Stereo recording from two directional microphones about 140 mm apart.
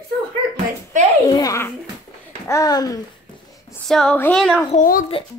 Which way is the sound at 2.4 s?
25° left (ahead or behind).